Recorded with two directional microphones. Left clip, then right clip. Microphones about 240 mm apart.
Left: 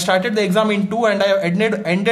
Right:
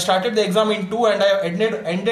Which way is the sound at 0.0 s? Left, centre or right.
Left.